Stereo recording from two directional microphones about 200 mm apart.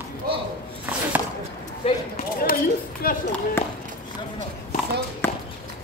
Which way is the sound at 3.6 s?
10° left (ahead or behind).